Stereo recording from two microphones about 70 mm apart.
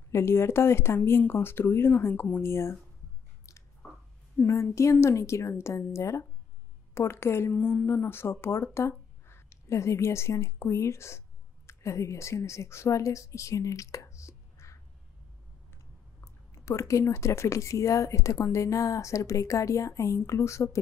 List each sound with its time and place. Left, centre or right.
0.1 s speech: left
4.4 s speech: left
16.5 s speech: left